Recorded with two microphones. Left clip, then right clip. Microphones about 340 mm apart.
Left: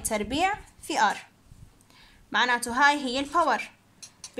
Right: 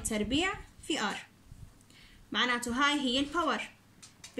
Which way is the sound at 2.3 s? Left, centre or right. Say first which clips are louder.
Left 6 dB; centre.